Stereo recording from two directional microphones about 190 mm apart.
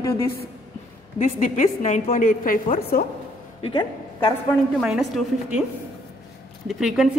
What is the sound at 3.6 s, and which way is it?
Speech, 25° left (ahead or behind).